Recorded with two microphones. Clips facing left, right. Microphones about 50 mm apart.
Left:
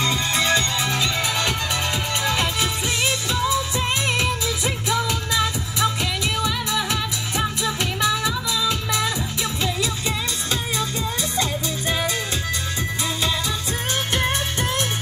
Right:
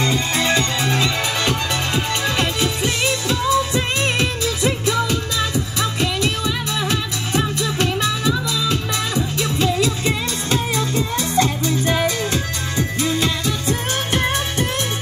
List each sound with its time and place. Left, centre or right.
0.0 s music: right
10.0 s music: right
12.7 s music: right